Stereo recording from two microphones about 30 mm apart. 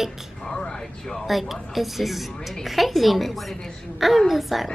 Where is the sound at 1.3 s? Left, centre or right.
Centre.